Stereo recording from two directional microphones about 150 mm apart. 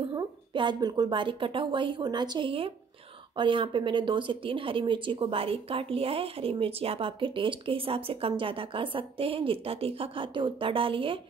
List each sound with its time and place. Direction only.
0.1 s a woman's voice: 30° right (ahead or behind)